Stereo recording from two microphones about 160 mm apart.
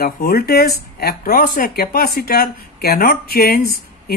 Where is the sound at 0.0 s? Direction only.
70° left (ahead or behind).